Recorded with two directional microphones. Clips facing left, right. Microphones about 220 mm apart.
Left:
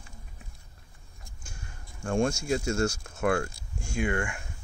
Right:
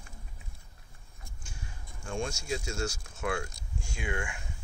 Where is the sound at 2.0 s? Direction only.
55° left (ahead or behind).